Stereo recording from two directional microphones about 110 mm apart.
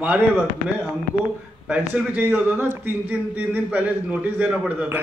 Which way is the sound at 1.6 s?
10° right (ahead or behind).